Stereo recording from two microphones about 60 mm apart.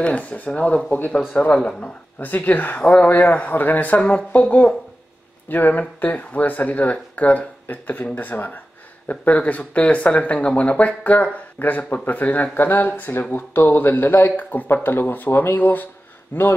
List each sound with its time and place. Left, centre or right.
0.0 s speech: left
1.5 s speech: centre
2.1 s speech: left